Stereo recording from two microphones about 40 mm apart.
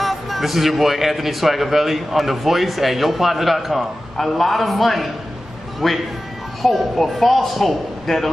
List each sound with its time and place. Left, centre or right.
0.0 s a man's voice: centre